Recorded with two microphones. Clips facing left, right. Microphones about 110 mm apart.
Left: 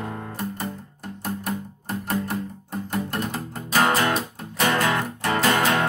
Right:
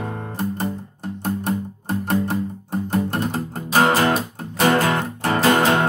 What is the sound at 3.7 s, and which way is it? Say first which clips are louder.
Music: right 4 dB; 35° right (ahead or behind).